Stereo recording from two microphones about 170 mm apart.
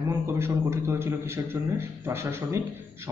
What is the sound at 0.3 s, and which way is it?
A man's voice, 15° right (ahead or behind).